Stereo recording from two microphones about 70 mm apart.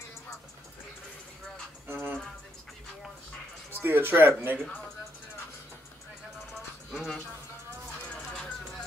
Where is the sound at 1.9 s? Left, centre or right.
Right.